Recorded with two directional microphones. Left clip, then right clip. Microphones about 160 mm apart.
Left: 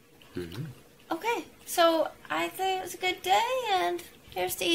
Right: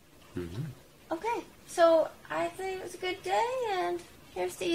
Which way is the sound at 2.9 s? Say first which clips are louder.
Left 3 dB; 20° left (ahead or behind).